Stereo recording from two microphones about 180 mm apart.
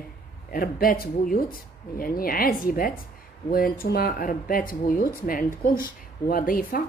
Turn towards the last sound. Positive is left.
turn(degrees=50)  # may be behind; listen again after turning